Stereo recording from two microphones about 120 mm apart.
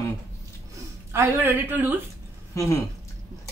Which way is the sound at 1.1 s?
20° right (ahead or behind).